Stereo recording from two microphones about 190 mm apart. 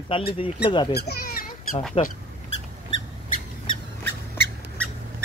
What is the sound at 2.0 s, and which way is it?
Speech, 25° left (ahead or behind).